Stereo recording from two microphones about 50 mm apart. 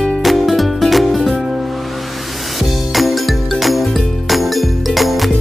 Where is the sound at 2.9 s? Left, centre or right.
Centre.